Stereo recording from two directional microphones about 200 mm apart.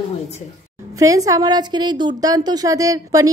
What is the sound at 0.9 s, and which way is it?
A woman's voice, 15° right (ahead or behind).